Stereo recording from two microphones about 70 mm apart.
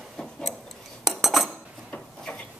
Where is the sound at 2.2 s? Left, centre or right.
Centre.